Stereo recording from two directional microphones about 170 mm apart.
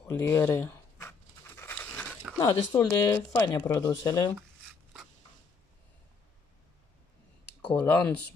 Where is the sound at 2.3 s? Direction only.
15° left (ahead or behind).